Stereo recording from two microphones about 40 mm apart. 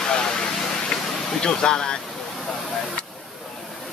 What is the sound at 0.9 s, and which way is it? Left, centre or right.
Vehicle, centre.